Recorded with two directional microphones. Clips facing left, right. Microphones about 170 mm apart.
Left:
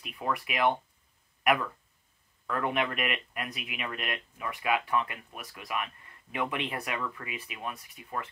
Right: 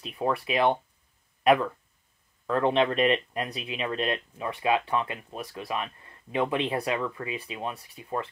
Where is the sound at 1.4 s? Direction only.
30° right (ahead or behind).